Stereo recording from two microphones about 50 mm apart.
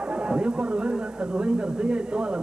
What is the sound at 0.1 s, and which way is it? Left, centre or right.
Speech, right.